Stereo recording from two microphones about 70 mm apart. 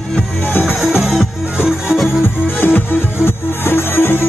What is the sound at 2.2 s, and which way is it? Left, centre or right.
Music, left.